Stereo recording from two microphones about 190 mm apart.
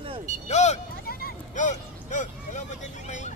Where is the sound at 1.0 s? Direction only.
50° left (ahead or behind).